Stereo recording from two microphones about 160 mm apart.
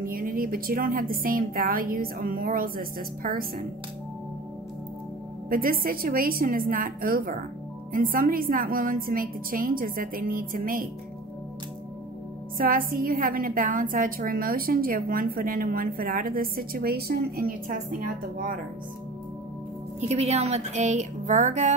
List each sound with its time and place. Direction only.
0.0 s a woman's voice: 65° right (ahead or behind)
5.5 s a woman's voice: 65° right (ahead or behind)
12.5 s a woman's voice: 60° right (ahead or behind)
20.0 s speech: 45° right (ahead or behind)